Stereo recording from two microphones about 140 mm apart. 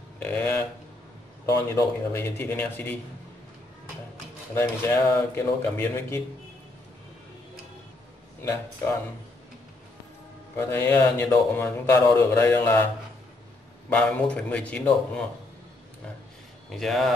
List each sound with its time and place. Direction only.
0.2 s a sound: 10° left (ahead or behind)
1.4 s speech: 20° left (ahead or behind)
4.6 s speech: 15° left (ahead or behind)
8.4 s speech: 20° left (ahead or behind)
10.7 s speech: 15° left (ahead or behind)
13.8 s speech: 10° left (ahead or behind)
16.7 s speech: centre (ahead or behind)